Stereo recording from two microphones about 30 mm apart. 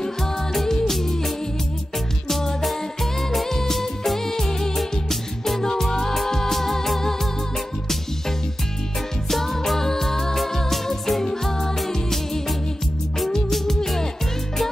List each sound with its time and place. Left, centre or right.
0.2 s music: centre
2.6 s music: centre
9.3 s music: centre
13.3 s music: centre